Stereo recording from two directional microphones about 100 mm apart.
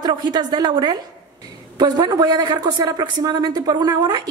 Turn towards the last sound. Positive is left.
turn(degrees=-40)  # may be behind; listen again after turning